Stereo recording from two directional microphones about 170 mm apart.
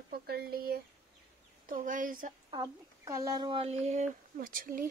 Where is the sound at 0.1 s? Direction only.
65° right (ahead or behind).